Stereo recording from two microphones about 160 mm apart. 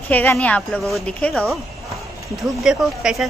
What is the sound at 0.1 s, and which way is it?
Speech, 10° left (ahead or behind).